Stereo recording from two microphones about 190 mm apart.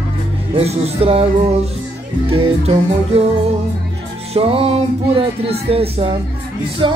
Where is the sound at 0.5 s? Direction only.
35° right (ahead or behind).